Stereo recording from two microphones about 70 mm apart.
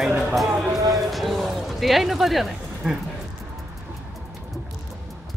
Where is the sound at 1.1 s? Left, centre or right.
Centre.